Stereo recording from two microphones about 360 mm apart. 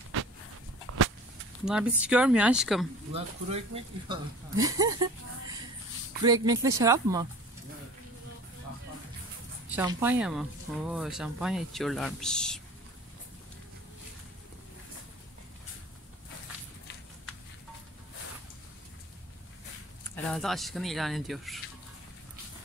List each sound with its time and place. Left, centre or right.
0.9 s whip: right
1.7 s speech: centre
3.1 s speech: centre
6.2 s speech: centre
9.7 s speech: centre
20.0 s speech: centre